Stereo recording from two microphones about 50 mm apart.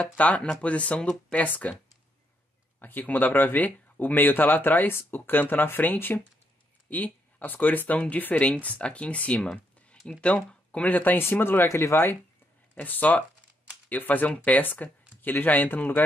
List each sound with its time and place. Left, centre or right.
0.0 s speech: left
2.8 s speech: left
10.9 s speech: left
11.6 s speech: left
12.7 s speech: left
14.6 s speech: left